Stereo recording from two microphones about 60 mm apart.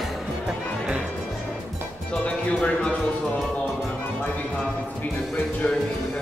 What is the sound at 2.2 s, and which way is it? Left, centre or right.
Music, centre.